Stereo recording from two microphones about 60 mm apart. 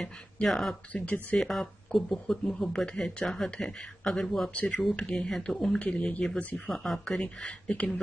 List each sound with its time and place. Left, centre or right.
0.0 s speech: centre
0.9 s speech: left
1.4 s speech: centre
4.6 s speech: left
4.9 s speech: centre
5.8 s speech: centre
6.7 s speech: centre
7.4 s speech: left